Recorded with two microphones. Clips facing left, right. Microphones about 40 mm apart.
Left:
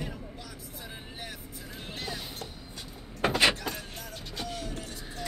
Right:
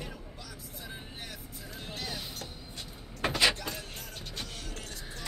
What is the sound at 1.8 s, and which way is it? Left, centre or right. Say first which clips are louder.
Music: left 1 dB; left.